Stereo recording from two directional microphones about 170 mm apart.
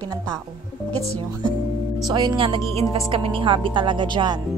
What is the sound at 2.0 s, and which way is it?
A woman's voice, 25° right (ahead or behind).